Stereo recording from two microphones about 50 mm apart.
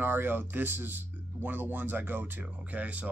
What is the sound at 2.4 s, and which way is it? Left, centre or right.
Speech, right.